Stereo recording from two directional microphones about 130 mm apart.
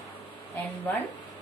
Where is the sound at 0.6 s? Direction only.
15° left (ahead or behind).